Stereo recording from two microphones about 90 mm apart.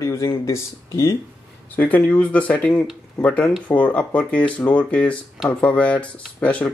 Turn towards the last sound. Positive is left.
turn(degrees=15)  # may be behind; listen again after turning